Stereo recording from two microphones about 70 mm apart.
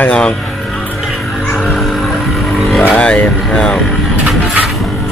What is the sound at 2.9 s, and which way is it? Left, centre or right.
Speech, centre.